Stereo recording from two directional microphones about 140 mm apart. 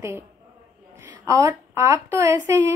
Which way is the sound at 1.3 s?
20° right (ahead or behind).